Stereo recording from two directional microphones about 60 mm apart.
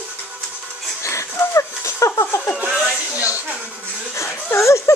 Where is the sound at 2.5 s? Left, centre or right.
Centre.